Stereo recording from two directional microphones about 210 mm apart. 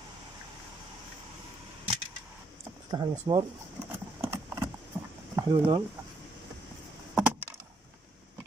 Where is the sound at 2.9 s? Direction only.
20° right (ahead or behind).